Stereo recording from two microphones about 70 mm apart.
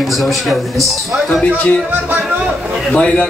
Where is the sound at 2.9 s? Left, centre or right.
Centre.